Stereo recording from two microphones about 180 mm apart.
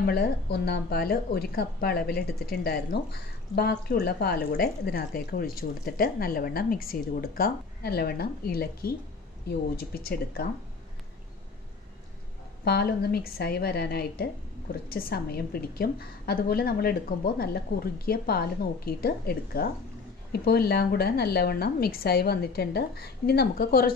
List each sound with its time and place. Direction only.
0.0 s a woman's voice: 60° left (ahead or behind)
12.6 s a woman's voice: 60° left (ahead or behind)